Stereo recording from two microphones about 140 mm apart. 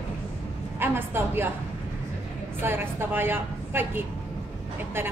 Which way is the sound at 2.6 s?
15° right (ahead or behind).